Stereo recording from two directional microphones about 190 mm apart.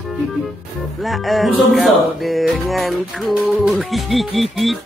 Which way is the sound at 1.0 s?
Centre (ahead or behind).